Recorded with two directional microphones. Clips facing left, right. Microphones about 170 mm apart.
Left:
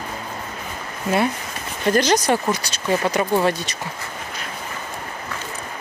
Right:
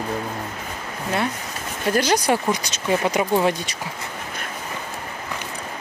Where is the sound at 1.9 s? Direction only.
10° right (ahead or behind).